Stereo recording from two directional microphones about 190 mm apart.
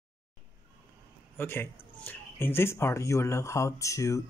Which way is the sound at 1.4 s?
10° left (ahead or behind).